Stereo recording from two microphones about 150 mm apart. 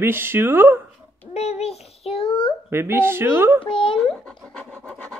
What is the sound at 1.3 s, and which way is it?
Speech, 45° left (ahead or behind).